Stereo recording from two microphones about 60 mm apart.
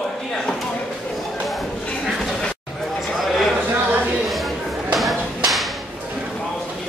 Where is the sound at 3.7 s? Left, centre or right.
Right.